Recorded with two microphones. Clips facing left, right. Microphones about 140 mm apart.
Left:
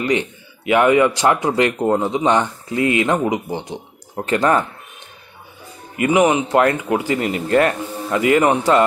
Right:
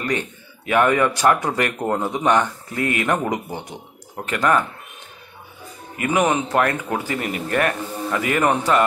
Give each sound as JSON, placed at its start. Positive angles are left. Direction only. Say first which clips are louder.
{"t": 0.0, "sound": "speech", "louder": "left 5 dB", "side_deg": 20}
{"t": 5.9, "sound": "speech", "louder": "left 4 dB", "side_deg": 20}